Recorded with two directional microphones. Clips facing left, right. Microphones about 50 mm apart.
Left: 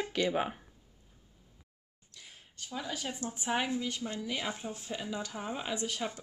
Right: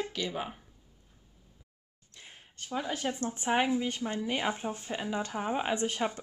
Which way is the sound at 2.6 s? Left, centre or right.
Right.